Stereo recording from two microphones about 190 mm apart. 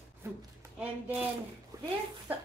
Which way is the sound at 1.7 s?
15° right (ahead or behind).